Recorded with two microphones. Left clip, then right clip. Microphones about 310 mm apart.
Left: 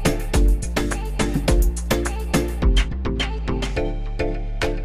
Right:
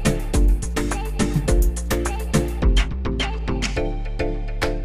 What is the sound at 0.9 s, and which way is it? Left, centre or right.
Music, centre.